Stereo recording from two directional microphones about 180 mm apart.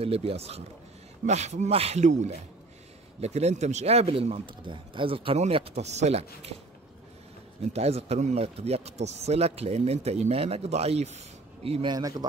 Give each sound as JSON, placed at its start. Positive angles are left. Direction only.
{"t": 0.0, "sound": "speech", "side_deg": -35}
{"t": 7.7, "sound": "a man's voice", "side_deg": -35}